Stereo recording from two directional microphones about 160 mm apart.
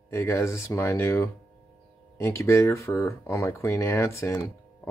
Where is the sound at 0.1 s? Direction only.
15° left (ahead or behind).